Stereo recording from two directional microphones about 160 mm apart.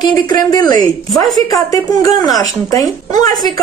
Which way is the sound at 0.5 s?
25° left (ahead or behind).